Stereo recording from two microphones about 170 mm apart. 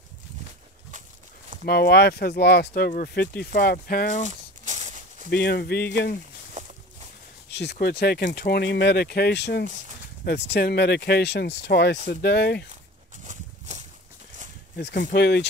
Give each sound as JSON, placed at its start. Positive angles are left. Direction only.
{"t": 1.7, "sound": "speech", "side_deg": 70}
{"t": 4.3, "sound": "a sound", "side_deg": -45}
{"t": 5.3, "sound": "speech", "side_deg": 70}
{"t": 6.6, "sound": "walk", "side_deg": -45}
{"t": 7.8, "sound": "speech", "side_deg": 70}
{"t": 13.2, "sound": "a sound", "side_deg": -45}
{"t": 14.8, "sound": "speech", "side_deg": 75}